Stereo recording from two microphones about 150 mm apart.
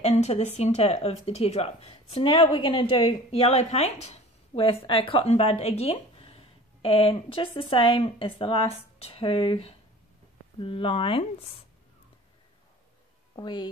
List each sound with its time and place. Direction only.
0.0 s speech: 45° left (ahead or behind)
13.4 s a woman's voice: 30° left (ahead or behind)